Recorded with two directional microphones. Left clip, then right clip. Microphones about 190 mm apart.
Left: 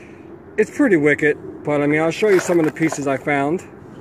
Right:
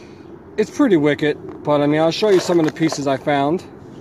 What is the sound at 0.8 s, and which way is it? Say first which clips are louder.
Speech: left 1 dB; 10° right (ahead or behind).